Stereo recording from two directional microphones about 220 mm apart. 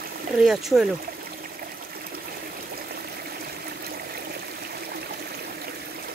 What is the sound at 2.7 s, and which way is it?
Water, 45° right (ahead or behind).